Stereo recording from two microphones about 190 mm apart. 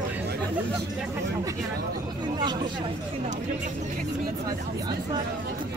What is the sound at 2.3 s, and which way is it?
Speech, 25° right (ahead or behind).